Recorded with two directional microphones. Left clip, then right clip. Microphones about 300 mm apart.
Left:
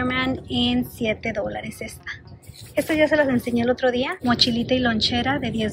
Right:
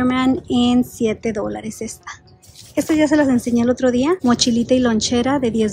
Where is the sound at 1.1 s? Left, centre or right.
Centre.